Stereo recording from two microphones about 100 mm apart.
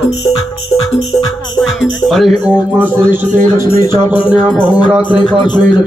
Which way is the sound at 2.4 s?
15° right (ahead or behind).